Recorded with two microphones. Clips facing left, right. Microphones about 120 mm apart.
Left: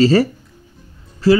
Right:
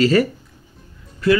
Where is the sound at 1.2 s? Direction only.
30° left (ahead or behind).